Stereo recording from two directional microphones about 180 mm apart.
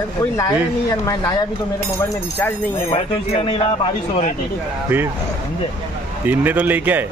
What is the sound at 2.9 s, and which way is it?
Speech, 30° left (ahead or behind).